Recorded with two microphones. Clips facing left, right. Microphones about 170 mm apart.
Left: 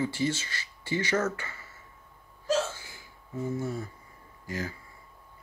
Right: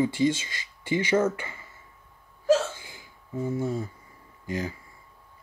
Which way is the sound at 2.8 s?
15° right (ahead or behind).